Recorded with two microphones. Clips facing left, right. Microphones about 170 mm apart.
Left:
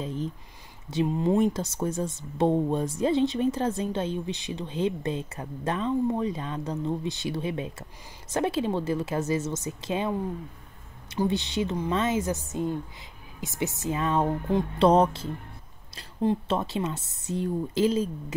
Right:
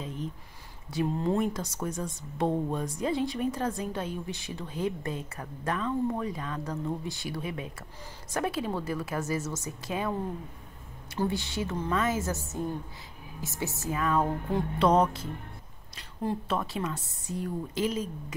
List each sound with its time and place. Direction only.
0.0 s a sound: 30° left (ahead or behind)
0.9 s speech: 15° left (ahead or behind)
11.1 s speech: 20° left (ahead or behind)